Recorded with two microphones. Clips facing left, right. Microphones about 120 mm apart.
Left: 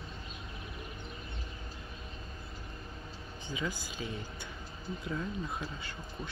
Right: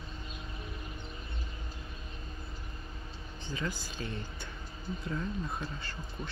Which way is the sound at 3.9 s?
5° left (ahead or behind).